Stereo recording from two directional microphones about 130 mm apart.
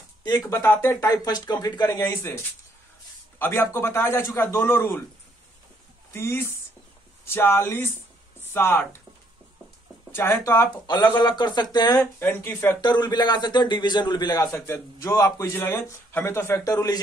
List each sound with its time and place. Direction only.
0.5 s a man's voice: 20° left (ahead or behind)
3.3 s a man's voice: 15° left (ahead or behind)
6.1 s a man's voice: 20° left (ahead or behind)
10.1 s a man's voice: 20° left (ahead or behind)
11.1 s speech: 35° left (ahead or behind)
12.0 s a man's voice: 20° left (ahead or behind)
12.8 s a man's voice: 35° left (ahead or behind)